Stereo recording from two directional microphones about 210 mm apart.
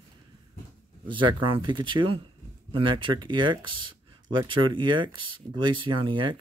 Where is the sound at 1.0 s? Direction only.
25° right (ahead or behind).